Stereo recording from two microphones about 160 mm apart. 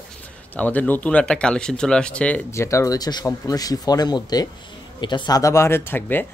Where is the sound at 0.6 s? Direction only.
10° left (ahead or behind).